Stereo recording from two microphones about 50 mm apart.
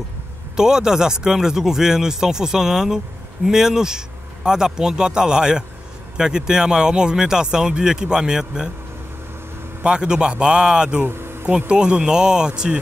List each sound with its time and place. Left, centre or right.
0.6 s speech: centre
9.8 s speech: centre
11.1 s a sound: right
11.4 s speech: centre